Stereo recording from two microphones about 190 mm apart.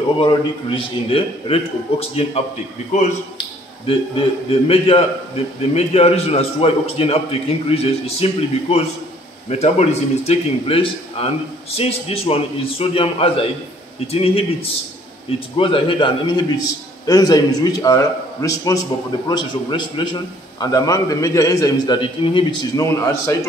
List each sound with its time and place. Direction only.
0.2 s a man's voice: 25° left (ahead or behind)